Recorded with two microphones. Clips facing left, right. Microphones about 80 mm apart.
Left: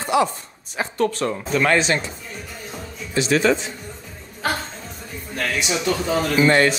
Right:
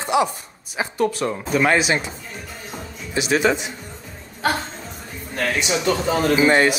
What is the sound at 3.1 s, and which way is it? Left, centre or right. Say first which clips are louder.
Speech: left 1 dB; centre.